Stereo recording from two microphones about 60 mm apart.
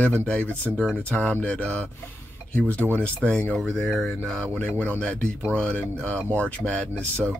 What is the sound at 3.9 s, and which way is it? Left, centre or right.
Speech, centre.